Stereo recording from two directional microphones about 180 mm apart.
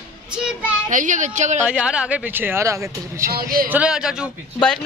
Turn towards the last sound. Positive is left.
turn(degrees=5)  # may be behind; listen again after turning